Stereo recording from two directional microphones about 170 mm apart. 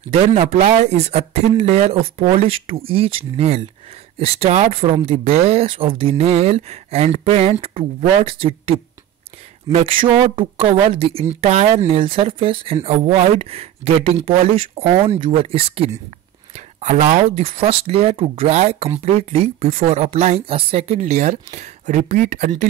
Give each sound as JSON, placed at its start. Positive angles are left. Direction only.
{"t": 0.1, "sound": "a woman's voice", "side_deg": -40}